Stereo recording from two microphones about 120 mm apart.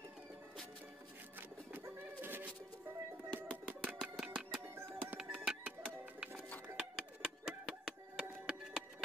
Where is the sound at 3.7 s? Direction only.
10° right (ahead or behind).